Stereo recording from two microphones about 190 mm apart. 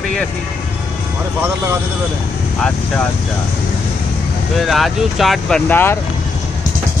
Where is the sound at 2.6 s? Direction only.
5° left (ahead or behind).